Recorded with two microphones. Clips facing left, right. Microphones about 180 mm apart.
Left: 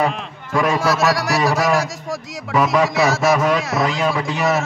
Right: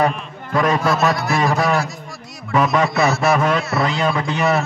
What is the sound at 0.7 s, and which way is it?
Speech, 90° left.